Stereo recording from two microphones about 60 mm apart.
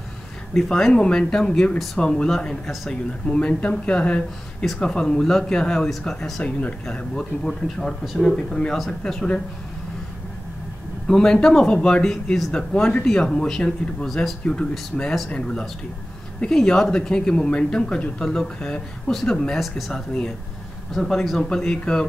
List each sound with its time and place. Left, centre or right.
0.6 s speech: centre
2.9 s speech: centre
6.4 s speech: centre
7.4 s speech: centre
11.1 s speech: centre
14.4 s speech: centre